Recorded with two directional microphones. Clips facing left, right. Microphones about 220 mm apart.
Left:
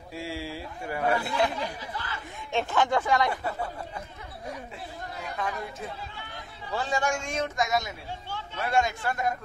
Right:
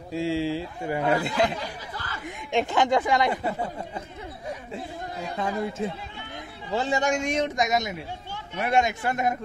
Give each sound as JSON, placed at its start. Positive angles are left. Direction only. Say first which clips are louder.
{"t": 0.1, "sound": "speech", "louder": "right 10 dB", "side_deg": -25}
{"t": 5.2, "sound": "speech", "louder": "right 6 dB", "side_deg": -25}